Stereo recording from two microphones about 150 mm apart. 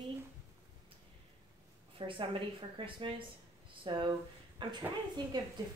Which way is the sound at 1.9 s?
35° right (ahead or behind).